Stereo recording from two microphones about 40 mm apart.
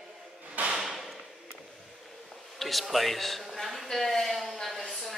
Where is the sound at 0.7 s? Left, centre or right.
Centre.